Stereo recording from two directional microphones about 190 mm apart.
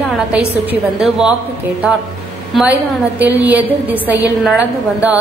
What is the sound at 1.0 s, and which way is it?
Speech, 5° right (ahead or behind).